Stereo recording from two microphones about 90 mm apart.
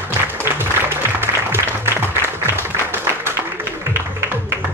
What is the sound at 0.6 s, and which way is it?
Applause, 25° right (ahead or behind).